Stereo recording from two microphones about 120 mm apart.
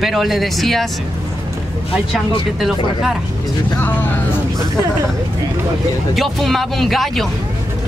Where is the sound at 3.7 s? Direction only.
15° left (ahead or behind).